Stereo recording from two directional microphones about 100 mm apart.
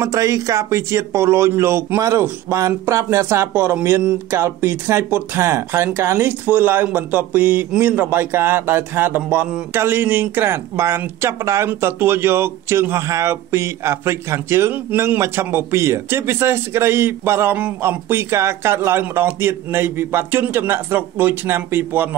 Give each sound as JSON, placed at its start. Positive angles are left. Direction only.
{"t": 0.0, "sound": "speech", "side_deg": -30}